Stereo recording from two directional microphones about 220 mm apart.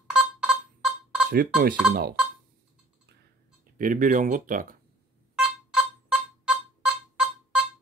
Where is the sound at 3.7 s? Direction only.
40° right (ahead or behind).